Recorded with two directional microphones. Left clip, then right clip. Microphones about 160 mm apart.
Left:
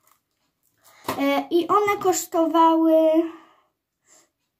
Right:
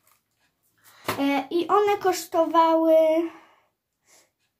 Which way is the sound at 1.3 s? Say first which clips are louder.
Left 2 dB; 25° left (ahead or behind).